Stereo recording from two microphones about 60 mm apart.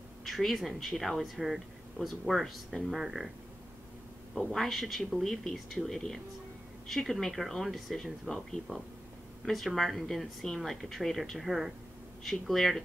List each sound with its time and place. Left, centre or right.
0.2 s speech: centre
4.4 s speech: centre